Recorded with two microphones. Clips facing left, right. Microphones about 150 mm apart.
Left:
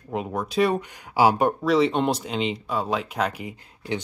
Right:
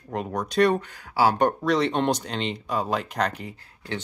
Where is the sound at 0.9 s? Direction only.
15° left (ahead or behind).